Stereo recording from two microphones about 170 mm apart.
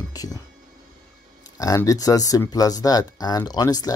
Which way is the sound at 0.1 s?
20° left (ahead or behind).